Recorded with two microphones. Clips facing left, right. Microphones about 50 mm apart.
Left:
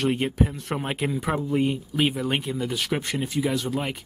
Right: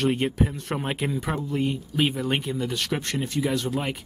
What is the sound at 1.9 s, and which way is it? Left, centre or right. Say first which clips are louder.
Speech: even; centre.